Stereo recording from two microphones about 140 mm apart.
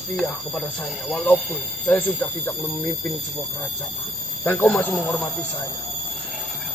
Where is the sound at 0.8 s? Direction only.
5° right (ahead or behind).